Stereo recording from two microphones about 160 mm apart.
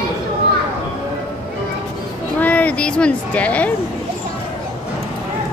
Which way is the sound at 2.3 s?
10° left (ahead or behind).